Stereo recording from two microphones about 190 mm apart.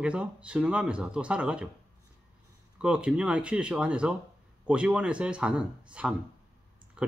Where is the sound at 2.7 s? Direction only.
5° right (ahead or behind).